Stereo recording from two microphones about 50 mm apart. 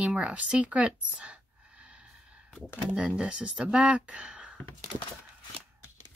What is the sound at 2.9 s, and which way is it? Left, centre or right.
Speech, centre.